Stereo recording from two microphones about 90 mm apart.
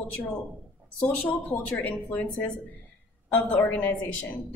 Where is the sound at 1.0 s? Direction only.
15° left (ahead or behind).